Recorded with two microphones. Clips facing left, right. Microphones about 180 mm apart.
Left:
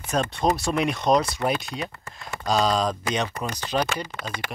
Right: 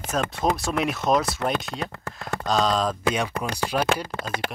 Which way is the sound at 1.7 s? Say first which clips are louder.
Right 1 dB; 60° right (ahead or behind).